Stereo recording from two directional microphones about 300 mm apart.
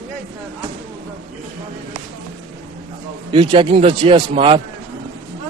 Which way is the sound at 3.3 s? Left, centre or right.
Centre.